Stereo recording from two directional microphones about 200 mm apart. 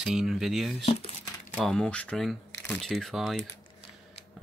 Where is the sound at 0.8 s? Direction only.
30° left (ahead or behind).